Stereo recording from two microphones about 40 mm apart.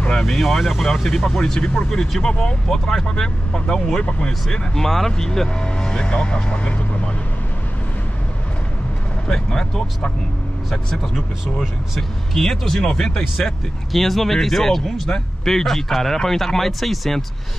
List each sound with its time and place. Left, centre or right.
0.1 s speech: centre
1.0 s speech: centre
4.7 s speech: centre; by 6.4 s left
9.3 s speech: centre
12.4 s speech: centre
13.9 s speech: centre